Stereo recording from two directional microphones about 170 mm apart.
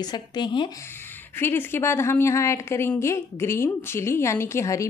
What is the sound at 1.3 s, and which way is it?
A woman's voice, 15° left (ahead or behind).